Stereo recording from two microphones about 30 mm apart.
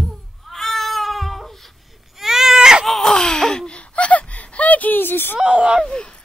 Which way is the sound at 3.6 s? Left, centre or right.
Left.